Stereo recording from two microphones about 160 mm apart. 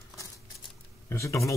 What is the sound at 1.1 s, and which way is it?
Speech, 20° left (ahead or behind).